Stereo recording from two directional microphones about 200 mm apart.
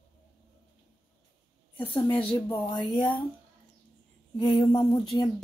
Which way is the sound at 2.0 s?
10° left (ahead or behind).